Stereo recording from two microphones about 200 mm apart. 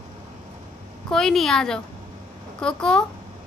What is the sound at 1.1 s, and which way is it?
A woman's voice, centre (ahead or behind).